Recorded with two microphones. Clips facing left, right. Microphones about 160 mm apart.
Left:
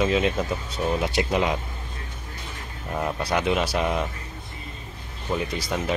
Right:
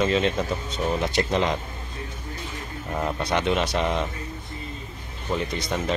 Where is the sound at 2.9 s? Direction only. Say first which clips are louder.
Even; centre (ahead or behind).